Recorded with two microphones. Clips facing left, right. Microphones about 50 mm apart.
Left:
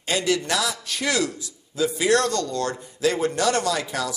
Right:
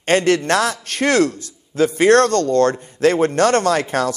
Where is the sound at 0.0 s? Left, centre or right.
Right.